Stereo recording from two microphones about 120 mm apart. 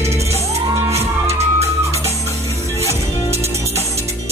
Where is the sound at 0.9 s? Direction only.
60° right (ahead or behind).